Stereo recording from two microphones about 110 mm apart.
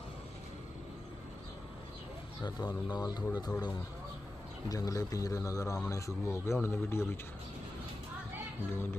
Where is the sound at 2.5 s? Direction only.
35° left (ahead or behind).